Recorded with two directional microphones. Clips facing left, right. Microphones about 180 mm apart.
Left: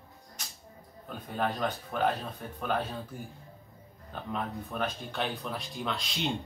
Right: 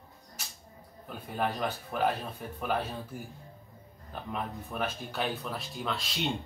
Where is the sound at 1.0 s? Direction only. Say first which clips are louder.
Even; 5° right (ahead or behind).